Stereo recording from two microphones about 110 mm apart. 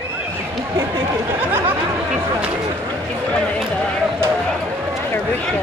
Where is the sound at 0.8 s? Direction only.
30° right (ahead or behind).